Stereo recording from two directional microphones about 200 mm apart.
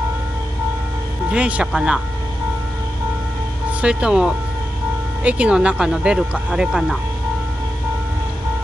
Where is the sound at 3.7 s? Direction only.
5° right (ahead or behind).